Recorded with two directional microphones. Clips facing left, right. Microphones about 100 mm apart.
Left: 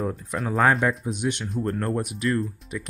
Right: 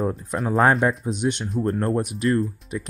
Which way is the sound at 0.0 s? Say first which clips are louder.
Right 3 dB; 30° right (ahead or behind).